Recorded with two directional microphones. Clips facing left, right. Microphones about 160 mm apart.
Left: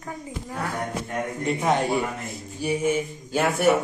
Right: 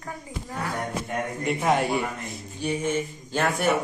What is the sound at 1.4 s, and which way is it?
A man's voice, centre (ahead or behind).